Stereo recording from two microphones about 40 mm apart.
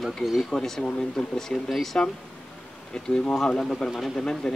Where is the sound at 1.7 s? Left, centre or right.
Centre.